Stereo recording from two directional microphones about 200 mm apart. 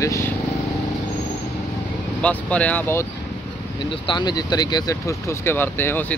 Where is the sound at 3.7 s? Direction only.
25° left (ahead or behind).